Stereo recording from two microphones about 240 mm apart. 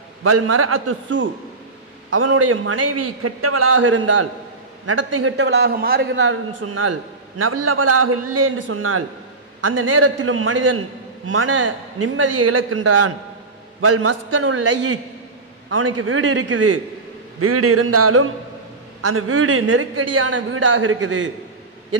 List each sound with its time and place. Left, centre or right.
0.2 s a man's voice: right
6.5 s a man's voice: right
15.8 s a man's voice: right
17.4 s a man's voice: right